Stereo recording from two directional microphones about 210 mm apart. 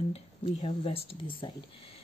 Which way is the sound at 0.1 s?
30° left (ahead or behind).